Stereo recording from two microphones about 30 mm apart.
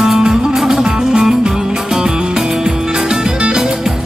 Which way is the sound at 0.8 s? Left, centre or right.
Centre.